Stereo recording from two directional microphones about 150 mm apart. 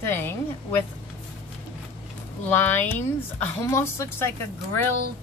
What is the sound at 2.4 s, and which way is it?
Speech, 10° left (ahead or behind).